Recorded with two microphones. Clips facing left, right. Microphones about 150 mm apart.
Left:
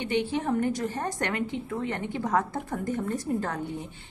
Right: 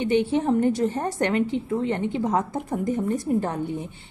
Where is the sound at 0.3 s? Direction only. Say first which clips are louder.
Right 6 dB; 25° right (ahead or behind).